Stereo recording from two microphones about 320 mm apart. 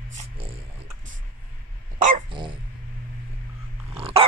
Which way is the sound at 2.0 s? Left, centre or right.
Centre.